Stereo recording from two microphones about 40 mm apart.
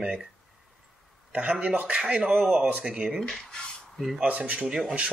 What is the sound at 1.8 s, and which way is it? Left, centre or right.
Speech, right.